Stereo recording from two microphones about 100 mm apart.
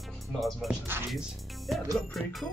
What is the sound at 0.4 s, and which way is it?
Speech, centre (ahead or behind).